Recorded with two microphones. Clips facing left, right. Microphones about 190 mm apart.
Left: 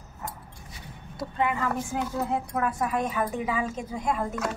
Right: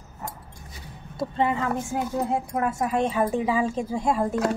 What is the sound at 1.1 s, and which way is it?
A woman's voice, 25° right (ahead or behind).